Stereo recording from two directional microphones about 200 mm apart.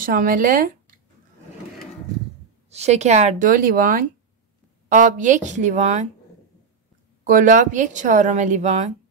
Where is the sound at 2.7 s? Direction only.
35° right (ahead or behind).